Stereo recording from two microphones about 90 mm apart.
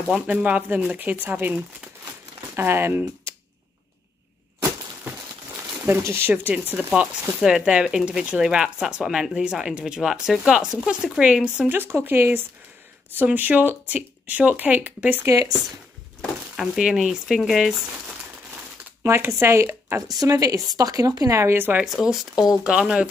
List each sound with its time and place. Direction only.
0.1 s speech: 15° right (ahead or behind)
5.9 s speech: 30° right (ahead or behind); by 11.8 s 10° right (ahead or behind)
11.8 s speech: 25° right (ahead or behind)
15.2 s speech: 40° right (ahead or behind)
16.5 s speech: 5° right (ahead or behind)
19.0 s speech: 30° right (ahead or behind)
20.2 s speech: 40° right (ahead or behind); by 21.8 s 25° right (ahead or behind)
21.8 s speech: 5° right (ahead or behind)